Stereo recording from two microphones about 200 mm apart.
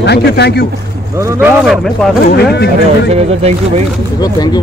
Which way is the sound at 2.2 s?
55° left (ahead or behind).